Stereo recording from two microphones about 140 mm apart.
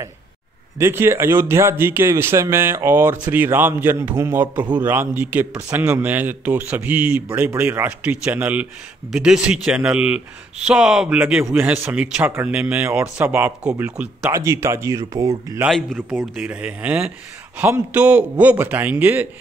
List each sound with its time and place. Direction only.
0.7 s speech: 15° right (ahead or behind)
14.3 s speech: 20° right (ahead or behind)
15.6 s speech: centre (ahead or behind)